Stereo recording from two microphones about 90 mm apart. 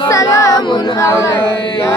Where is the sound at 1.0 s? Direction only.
35° left (ahead or behind).